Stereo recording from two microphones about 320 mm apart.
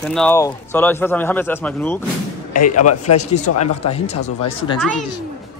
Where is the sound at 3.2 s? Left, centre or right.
Left.